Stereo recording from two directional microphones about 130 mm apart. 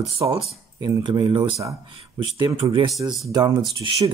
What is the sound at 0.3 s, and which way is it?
Speech, 35° right (ahead or behind).